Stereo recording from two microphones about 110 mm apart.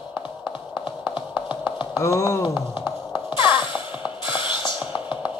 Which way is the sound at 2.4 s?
50° left (ahead or behind).